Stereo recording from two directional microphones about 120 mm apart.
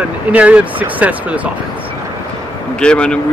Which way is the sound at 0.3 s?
10° right (ahead or behind).